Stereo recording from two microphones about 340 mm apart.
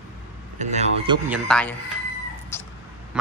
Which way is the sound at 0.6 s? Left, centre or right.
Centre.